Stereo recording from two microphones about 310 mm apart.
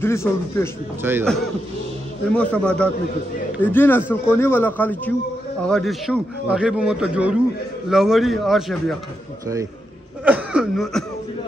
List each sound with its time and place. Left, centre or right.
0.0 s a man's voice: centre
1.0 s a man's voice: centre
2.3 s a man's voice: centre
10.2 s chuckle: centre